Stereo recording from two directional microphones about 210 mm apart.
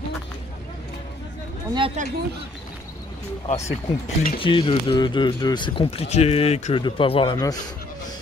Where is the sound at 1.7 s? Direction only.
25° right (ahead or behind).